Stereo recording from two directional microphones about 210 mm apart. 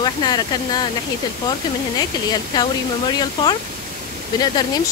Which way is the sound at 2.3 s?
20° left (ahead or behind).